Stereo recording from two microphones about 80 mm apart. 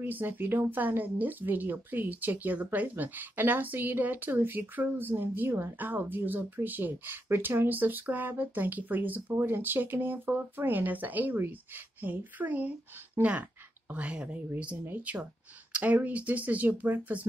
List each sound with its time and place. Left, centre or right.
0.0 s speech: right